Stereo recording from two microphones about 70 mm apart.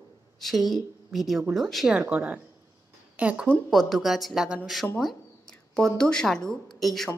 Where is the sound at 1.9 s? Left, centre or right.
Centre.